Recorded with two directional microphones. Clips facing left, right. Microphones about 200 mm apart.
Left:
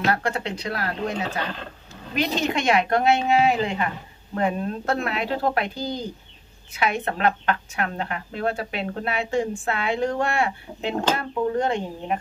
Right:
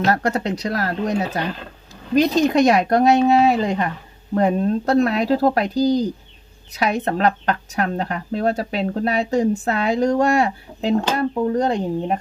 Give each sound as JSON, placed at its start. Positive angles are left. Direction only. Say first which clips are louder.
{"t": 0.0, "sound": "speech", "louder": "right 5 dB", "side_deg": -40}